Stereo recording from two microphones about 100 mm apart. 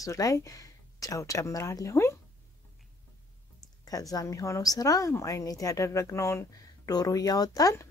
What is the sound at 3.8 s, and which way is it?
Speech, 35° left (ahead or behind).